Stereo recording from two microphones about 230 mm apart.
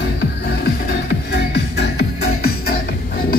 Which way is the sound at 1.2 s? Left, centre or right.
Left.